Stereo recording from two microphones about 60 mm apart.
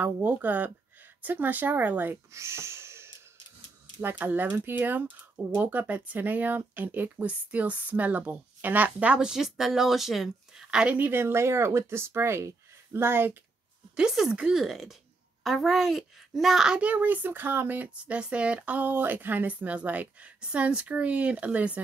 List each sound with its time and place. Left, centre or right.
0.0 s speech: right
2.3 s speech: right
4.0 s speech: right
9.2 s speech: centre
11.0 s speech: right
13.9 s speech: centre
16.8 s speech: right